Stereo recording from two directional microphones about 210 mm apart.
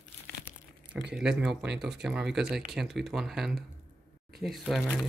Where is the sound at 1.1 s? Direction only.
5° right (ahead or behind).